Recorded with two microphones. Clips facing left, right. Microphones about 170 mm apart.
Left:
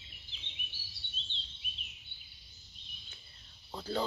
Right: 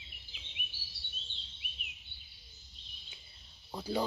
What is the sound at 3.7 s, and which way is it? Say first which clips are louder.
Speech: right 1 dB; 10° right (ahead or behind).